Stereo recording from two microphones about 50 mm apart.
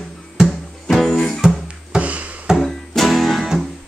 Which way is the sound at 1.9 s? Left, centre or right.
Right.